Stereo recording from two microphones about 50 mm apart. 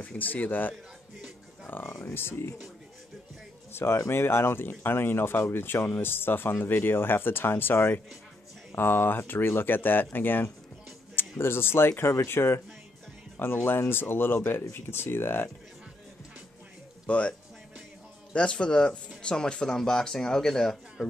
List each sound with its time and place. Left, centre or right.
0.0 s speech: left
2.1 s speech: left
3.7 s speech: left
13.7 s speech: left
17.0 s speech: left
18.3 s speech: left